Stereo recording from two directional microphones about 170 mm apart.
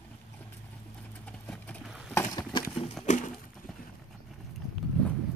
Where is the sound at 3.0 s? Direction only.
45° left (ahead or behind).